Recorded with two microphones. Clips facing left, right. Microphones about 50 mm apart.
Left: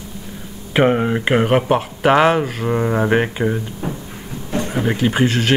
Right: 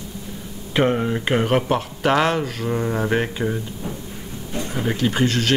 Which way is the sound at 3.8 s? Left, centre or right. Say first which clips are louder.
Left 5 dB; left.